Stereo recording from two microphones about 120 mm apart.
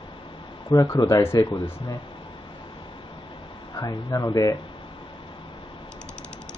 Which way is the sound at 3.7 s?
35° left (ahead or behind).